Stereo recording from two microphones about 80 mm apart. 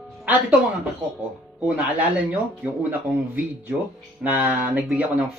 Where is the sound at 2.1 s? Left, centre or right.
Centre.